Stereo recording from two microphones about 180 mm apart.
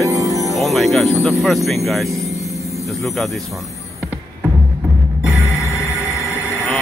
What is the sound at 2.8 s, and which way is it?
Speech, centre (ahead or behind).